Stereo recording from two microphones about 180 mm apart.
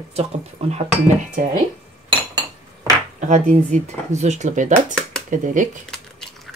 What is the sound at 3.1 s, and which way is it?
Speech, 40° right (ahead or behind).